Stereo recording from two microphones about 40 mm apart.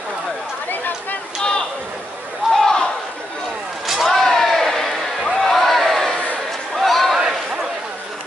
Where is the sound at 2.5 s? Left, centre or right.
Centre.